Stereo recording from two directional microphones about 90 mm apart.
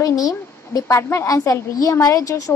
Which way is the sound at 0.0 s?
45° left (ahead or behind).